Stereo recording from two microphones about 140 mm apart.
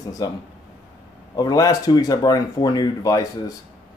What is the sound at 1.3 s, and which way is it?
Speech, 25° left (ahead or behind).